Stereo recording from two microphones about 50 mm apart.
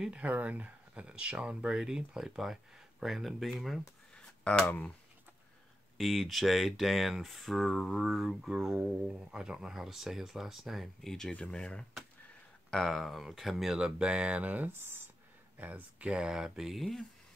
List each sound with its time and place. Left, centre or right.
0.1 s speech: right; by 3.8 s centre
4.5 s speech: left
5.9 s speech: centre
11.1 s speech: centre
12.7 s speech: centre
13.7 s speech: centre
16.3 s speech: centre
16.7 s speech: centre